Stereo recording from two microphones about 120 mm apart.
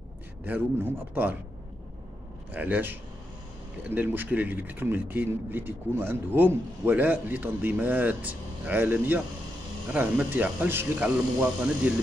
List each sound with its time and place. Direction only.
0.5 s speech: 20° right (ahead or behind)
2.5 s a man's voice: 15° right (ahead or behind)